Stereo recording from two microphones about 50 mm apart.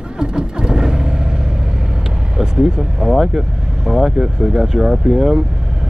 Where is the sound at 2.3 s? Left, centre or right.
Centre.